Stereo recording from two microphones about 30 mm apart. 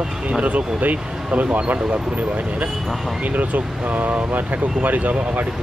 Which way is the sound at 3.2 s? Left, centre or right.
Right.